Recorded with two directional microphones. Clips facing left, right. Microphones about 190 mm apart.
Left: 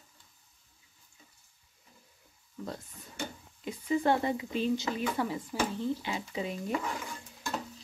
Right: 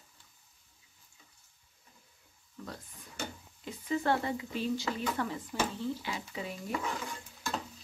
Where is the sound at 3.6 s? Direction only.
15° left (ahead or behind).